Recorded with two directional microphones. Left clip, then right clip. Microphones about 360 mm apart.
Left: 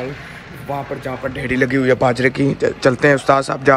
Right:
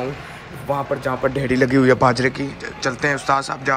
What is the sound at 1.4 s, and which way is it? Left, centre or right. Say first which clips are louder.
Speech: left 1 dB; centre.